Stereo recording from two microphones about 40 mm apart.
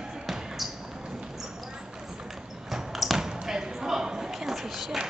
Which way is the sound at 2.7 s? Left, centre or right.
Centre.